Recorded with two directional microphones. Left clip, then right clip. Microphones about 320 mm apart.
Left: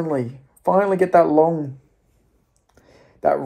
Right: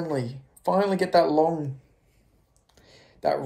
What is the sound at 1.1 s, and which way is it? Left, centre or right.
Speech, left.